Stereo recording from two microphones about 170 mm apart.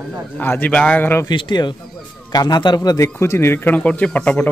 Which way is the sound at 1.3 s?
25° left (ahead or behind).